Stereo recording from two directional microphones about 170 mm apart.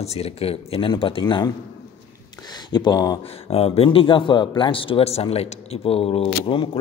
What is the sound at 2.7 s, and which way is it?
Speech, 25° left (ahead or behind).